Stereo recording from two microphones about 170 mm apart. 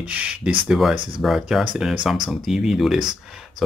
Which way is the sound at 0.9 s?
30° right (ahead or behind).